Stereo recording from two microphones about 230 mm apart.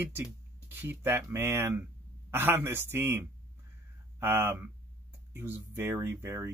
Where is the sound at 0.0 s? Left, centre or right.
Centre.